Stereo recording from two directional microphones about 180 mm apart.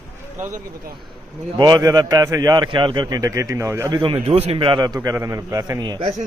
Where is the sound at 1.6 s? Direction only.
20° right (ahead or behind).